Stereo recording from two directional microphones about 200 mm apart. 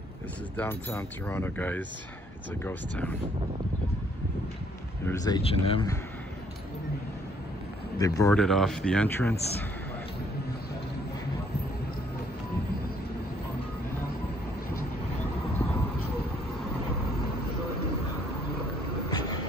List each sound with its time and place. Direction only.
0.6 s speech: 10° left (ahead or behind)
5.0 s speech: 20° left (ahead or behind)
8.0 s speech: 15° left (ahead or behind)
8.4 s speech: centre (ahead or behind)